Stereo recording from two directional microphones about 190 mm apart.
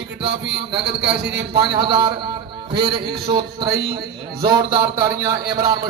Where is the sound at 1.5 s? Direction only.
25° right (ahead or behind).